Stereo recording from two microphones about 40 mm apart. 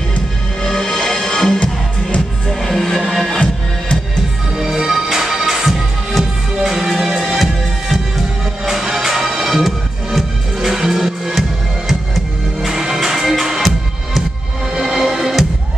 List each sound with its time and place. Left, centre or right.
0.6 s music: centre
1.6 s music: left
2.6 s music: centre
4.6 s music: centre
8.6 s music: centre
12.6 s music: centre